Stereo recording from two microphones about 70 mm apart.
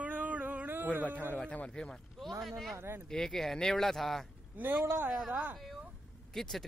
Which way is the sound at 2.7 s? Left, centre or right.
Right.